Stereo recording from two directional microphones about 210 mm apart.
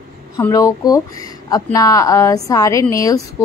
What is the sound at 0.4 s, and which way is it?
Speech, 15° left (ahead or behind).